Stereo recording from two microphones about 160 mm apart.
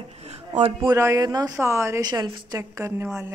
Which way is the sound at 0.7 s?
20° right (ahead or behind).